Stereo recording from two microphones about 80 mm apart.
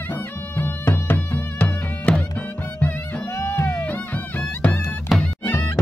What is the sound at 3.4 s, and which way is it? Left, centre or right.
Music, left.